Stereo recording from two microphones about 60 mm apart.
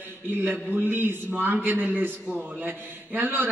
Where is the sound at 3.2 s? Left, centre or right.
Right.